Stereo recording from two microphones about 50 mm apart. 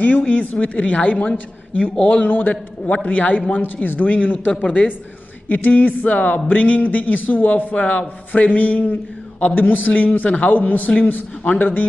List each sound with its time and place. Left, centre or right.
0.0 s speech: left
2.2 s speech: left
2.5 s speech: left